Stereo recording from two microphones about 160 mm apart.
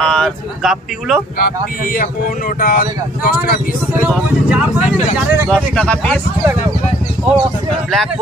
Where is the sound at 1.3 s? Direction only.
65° left (ahead or behind).